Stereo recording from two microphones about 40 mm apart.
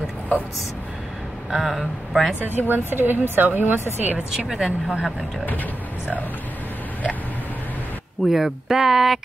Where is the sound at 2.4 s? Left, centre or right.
Right.